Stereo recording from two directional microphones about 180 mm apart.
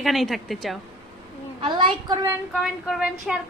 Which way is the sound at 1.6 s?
25° right (ahead or behind).